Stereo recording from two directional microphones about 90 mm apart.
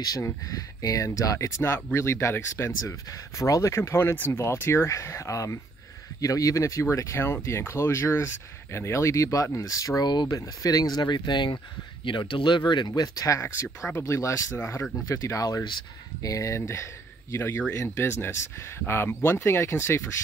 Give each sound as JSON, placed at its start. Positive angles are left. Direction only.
{"t": 0.0, "sound": "speech", "side_deg": 40}
{"t": 17.5, "sound": "speech", "side_deg": 20}
{"t": 17.7, "sound": "speech", "side_deg": 30}